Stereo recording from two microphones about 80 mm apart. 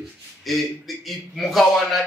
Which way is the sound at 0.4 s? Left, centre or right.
Centre.